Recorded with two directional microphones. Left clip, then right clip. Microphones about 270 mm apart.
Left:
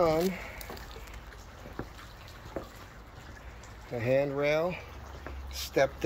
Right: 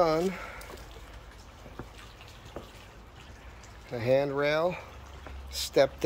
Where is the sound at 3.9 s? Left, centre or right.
Centre.